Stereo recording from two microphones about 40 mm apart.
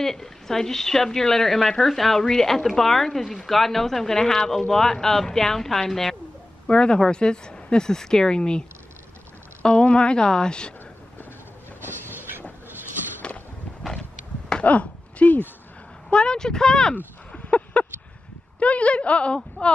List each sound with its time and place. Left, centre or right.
0.0 s speech: centre
6.7 s speech: left
11.8 s train: right
14.6 s a sound: left
16.1 s speech: left
17.3 s a sound: left
18.6 s a woman's voice: left